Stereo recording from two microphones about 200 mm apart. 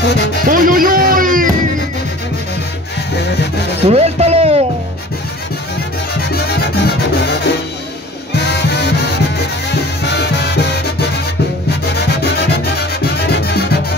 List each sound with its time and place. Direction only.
0.0 s music: 60° left (ahead or behind)
0.5 s music: 45° right (ahead or behind)
3.8 s music: 30° right (ahead or behind)
8.5 s music: 55° left (ahead or behind)
13.0 s music: 55° left (ahead or behind)